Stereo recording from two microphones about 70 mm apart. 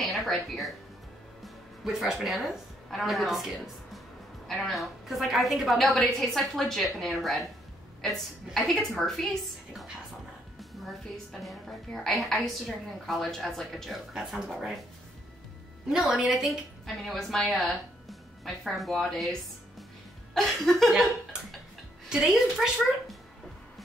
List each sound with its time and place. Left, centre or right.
0.0 s a woman's voice: centre
10.6 s a woman's voice: centre
15.9 s a woman's voice: centre
20.3 s a woman's voice: centre
22.1 s a woman's voice: centre